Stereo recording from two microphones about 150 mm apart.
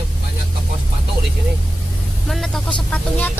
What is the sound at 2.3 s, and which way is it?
Speech, centre (ahead or behind).